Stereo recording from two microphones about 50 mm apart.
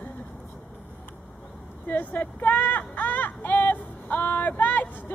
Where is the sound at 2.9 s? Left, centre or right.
Left.